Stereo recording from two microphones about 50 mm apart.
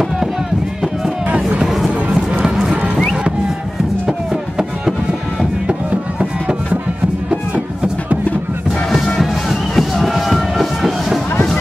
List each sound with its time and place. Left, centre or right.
1.3 s music: right
2.1 s music: centre
4.3 s music: centre
7.2 s music: centre
8.9 s music: centre